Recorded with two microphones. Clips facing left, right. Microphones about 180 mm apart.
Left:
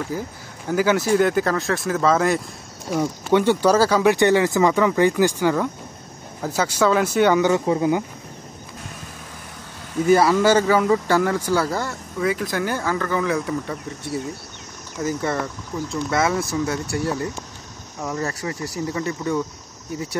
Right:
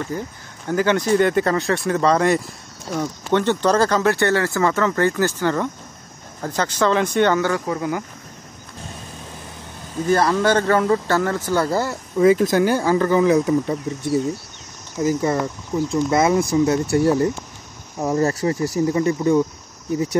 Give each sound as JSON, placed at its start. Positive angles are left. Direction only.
{"t": 0.1, "sound": "speech", "side_deg": 5}
{"t": 10.0, "sound": "speech", "side_deg": 10}
{"t": 12.2, "sound": "speech", "side_deg": -25}
{"t": 18.1, "sound": "speech", "side_deg": -30}